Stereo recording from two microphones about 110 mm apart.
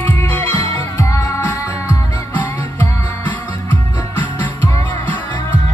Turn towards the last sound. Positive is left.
turn(degrees=20)  # may be behind; listen again after turning